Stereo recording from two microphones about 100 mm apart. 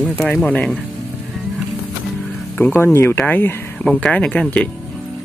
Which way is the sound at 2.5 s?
15° left (ahead or behind).